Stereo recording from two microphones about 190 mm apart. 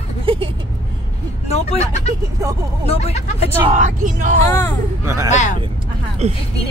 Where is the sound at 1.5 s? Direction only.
35° left (ahead or behind).